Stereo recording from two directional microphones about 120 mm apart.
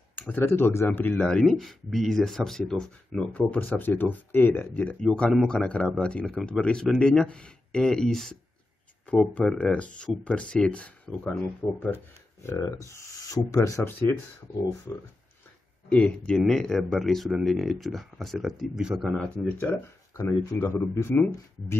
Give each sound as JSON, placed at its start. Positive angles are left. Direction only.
{"t": 0.1, "sound": "speech", "side_deg": 15}
{"t": 12.4, "sound": "rub", "side_deg": 25}
{"t": 15.9, "sound": "speech", "side_deg": 10}
{"t": 19.1, "sound": "speech", "side_deg": 10}
{"t": 20.2, "sound": "rub", "side_deg": 25}